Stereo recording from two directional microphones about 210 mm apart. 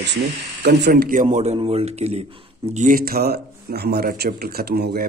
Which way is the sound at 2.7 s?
40° right (ahead or behind).